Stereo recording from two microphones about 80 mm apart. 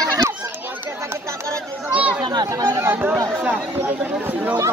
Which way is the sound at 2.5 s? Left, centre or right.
Right.